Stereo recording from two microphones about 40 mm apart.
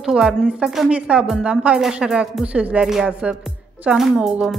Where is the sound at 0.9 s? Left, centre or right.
Right.